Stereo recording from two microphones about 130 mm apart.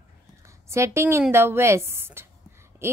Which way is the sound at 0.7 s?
20° right (ahead or behind).